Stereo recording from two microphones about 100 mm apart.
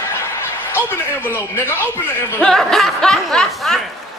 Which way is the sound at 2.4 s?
5° left (ahead or behind).